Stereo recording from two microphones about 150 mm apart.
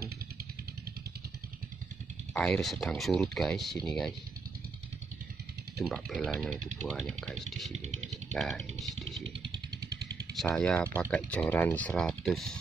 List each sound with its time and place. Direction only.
2.3 s speech: 5° left (ahead or behind)
5.8 s speech: centre (ahead or behind)
7.7 s speech: 45° right (ahead or behind)
8.3 s speech: 5° left (ahead or behind)
10.3 s speech: centre (ahead or behind)